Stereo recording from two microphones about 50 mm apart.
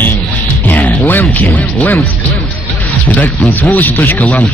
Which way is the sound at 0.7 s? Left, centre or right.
Left.